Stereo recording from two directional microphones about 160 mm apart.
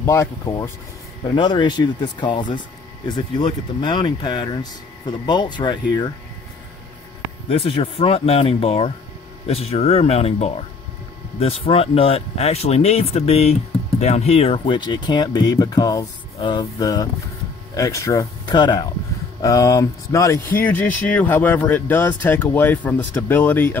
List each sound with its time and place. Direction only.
0.0 s speech: 20° left (ahead or behind)
7.4 s speech: 35° left (ahead or behind); by 23.8 s 10° left (ahead or behind)